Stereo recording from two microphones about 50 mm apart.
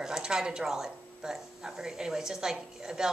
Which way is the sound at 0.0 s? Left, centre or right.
Centre.